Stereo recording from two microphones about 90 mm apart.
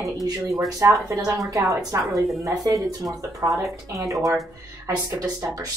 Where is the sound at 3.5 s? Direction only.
Centre (ahead or behind).